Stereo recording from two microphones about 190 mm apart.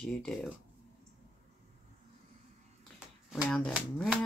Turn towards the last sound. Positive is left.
turn(degrees=0)  # may be behind; listen again after turning